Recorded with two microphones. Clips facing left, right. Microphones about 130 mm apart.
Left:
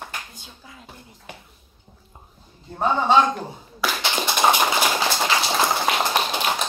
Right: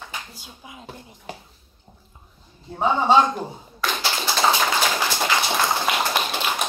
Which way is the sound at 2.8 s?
15° right (ahead or behind).